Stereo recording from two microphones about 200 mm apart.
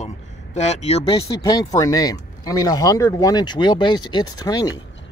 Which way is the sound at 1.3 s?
20° left (ahead or behind).